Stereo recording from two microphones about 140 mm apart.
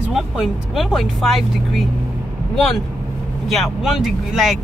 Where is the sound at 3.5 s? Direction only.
Centre (ahead or behind).